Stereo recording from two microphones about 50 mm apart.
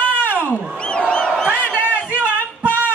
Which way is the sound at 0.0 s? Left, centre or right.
Left.